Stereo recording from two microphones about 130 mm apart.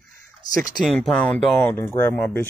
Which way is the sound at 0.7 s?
5° left (ahead or behind).